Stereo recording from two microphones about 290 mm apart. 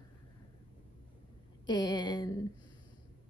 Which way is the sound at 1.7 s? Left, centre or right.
Centre.